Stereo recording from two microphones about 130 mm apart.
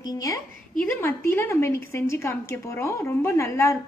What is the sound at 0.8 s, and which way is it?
A woman's voice, 10° left (ahead or behind).